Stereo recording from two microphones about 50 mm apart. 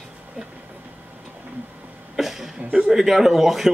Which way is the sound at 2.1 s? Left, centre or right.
Centre.